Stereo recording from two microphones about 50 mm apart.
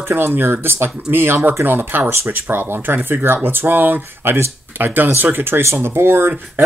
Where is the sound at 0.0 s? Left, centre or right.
Right.